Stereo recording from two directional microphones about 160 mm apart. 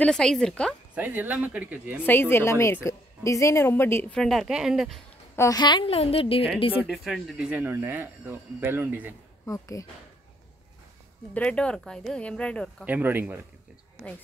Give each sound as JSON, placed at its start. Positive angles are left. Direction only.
{"t": 0.0, "sound": "a woman's voice", "side_deg": 5}
{"t": 0.9, "sound": "speech", "side_deg": -10}
{"t": 2.0, "sound": "a woman's voice", "side_deg": 15}
{"t": 5.3, "sound": "a woman's voice", "side_deg": 20}
{"t": 6.9, "sound": "speech", "side_deg": 0}
{"t": 9.5, "sound": "speech", "side_deg": 20}
{"t": 11.3, "sound": "a woman's voice", "side_deg": 5}
{"t": 12.8, "sound": "speech", "side_deg": -10}